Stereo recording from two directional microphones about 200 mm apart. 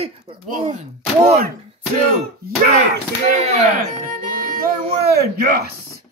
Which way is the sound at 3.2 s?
35° right (ahead or behind).